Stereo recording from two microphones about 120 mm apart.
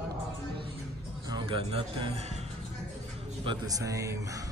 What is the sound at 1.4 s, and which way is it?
Speech, 55° right (ahead or behind).